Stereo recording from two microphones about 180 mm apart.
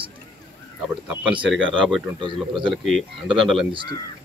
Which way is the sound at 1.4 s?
Centre (ahead or behind).